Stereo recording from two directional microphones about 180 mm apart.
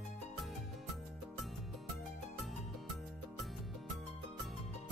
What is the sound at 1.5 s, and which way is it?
Music, centre (ahead or behind).